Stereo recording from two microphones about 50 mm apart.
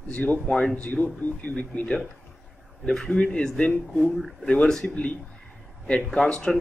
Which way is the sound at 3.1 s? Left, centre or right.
Centre.